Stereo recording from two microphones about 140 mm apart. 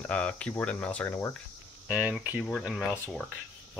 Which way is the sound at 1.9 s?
10° right (ahead or behind).